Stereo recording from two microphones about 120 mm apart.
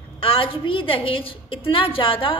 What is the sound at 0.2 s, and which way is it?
A woman's voice, 50° left (ahead or behind).